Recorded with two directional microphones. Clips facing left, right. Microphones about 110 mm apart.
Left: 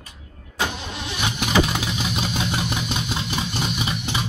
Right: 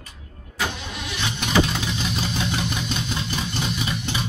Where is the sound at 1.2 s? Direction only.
15° left (ahead or behind).